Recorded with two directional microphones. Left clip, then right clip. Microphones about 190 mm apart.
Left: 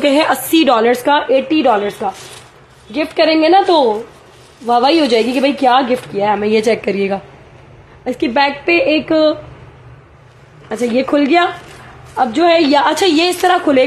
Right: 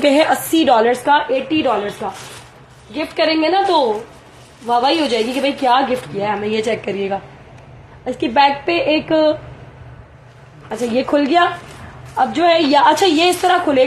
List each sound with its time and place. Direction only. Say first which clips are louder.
0.0 s a woman's voice: left 1 dB; 20° left (ahead or behind)
10.7 s a woman's voice: left 2 dB; 25° left (ahead or behind)